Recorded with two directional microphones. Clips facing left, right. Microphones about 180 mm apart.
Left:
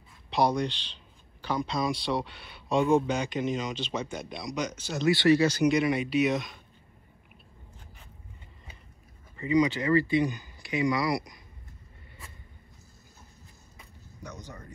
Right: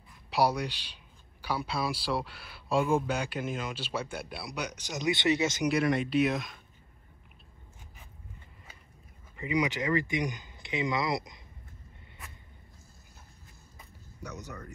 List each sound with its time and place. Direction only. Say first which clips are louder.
0.3 s speech: left 2 dB; 5° right (ahead or behind)
5.7 s speech: left 2 dB; centre (ahead or behind)
9.4 s speech: left 5 dB; 15° right (ahead or behind)